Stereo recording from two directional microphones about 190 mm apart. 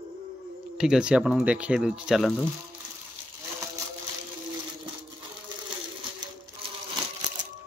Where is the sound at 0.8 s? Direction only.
5° right (ahead or behind).